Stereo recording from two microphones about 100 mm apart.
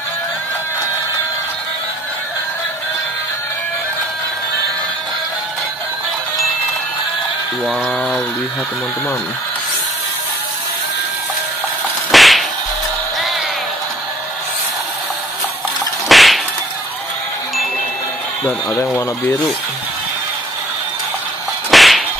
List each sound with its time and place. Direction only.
7.6 s speech: centre (ahead or behind)
12.1 s whip: centre (ahead or behind)
16.1 s whip: centre (ahead or behind)
21.6 s whip: centre (ahead or behind)